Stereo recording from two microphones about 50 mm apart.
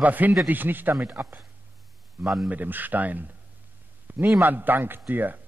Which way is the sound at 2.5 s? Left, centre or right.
Right.